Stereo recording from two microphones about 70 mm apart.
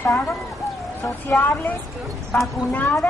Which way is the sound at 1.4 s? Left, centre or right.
Left.